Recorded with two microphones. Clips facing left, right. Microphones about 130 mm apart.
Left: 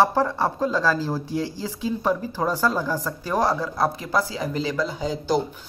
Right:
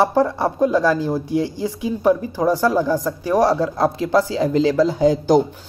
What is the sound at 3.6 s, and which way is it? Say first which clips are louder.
Speech: right 6 dB; 30° right (ahead or behind).